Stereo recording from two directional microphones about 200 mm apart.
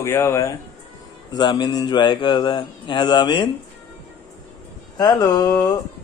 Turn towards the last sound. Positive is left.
turn(degrees=20)  # may be behind; listen again after turning